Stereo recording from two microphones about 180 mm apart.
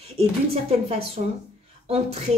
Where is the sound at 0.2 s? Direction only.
35° right (ahead or behind).